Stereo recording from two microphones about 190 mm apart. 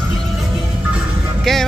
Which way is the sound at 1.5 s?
Centre (ahead or behind).